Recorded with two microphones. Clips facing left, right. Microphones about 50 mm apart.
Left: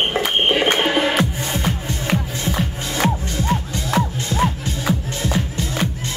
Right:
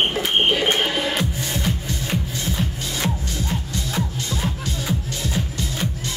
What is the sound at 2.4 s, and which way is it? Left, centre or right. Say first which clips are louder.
Music: left 3 dB; left.